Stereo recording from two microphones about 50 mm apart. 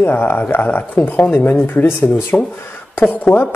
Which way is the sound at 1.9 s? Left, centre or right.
Left.